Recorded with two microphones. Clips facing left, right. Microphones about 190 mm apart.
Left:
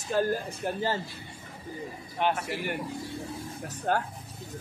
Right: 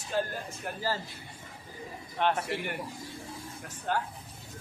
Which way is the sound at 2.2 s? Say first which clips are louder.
Left 1 dB; 10° left (ahead or behind).